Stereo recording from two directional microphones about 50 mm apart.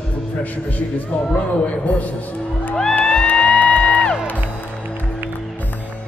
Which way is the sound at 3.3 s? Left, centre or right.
Centre.